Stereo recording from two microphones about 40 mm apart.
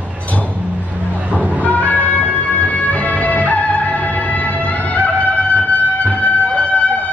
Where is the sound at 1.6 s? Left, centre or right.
Left.